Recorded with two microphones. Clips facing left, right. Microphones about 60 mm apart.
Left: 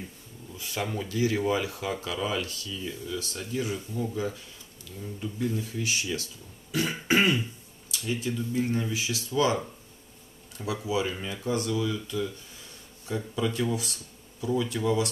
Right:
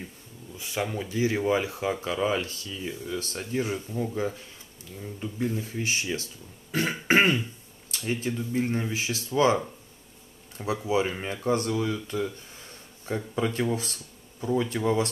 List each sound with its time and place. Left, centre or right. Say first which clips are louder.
0.6 s speech: right 2 dB; right
10.6 s speech: right 3 dB; right